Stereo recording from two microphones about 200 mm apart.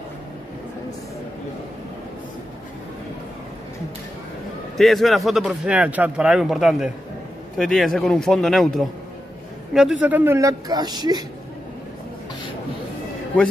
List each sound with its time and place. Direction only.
4.7 s a man's voice: centre (ahead or behind); by 11.2 s 20° right (ahead or behind)